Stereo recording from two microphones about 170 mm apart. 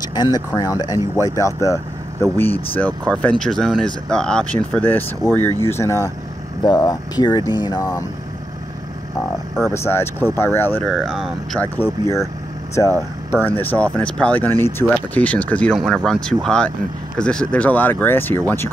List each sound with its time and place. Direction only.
0.0 s a sound: 25° left (ahead or behind)
0.6 s speech: 25° left (ahead or behind)
9.8 s speech: 15° left (ahead or behind)
10.9 s speech: centre (ahead or behind)
11.6 s speech: 10° left (ahead or behind)